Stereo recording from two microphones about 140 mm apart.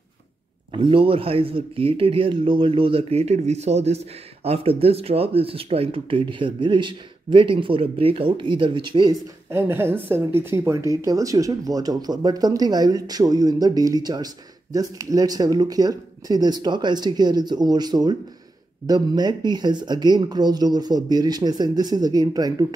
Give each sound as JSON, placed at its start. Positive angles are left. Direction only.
{"t": 0.7, "sound": "speech", "side_deg": -35}
{"t": 9.5, "sound": "a woman's voice", "side_deg": -15}